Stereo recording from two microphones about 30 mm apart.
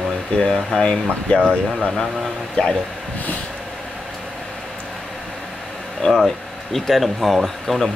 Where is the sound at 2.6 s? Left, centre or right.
Left.